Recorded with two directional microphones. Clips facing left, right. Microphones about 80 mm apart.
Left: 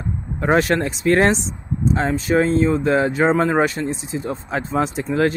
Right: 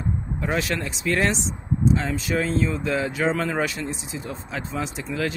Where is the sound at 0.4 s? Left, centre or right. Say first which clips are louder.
Left 10 dB; left.